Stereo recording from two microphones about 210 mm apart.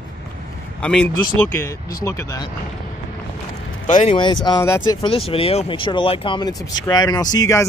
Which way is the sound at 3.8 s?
35° left (ahead or behind).